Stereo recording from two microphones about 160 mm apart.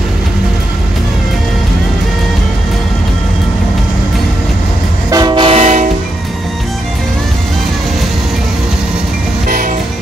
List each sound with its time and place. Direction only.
5.1 s train: 25° right (ahead or behind); by 5.9 s 45° right (ahead or behind)